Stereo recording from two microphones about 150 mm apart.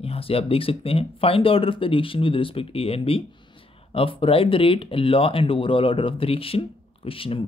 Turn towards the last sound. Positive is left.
turn(degrees=35)  # may be behind; listen again after turning